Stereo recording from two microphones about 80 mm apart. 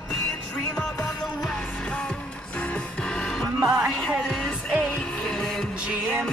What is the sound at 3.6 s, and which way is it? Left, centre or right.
Music, centre.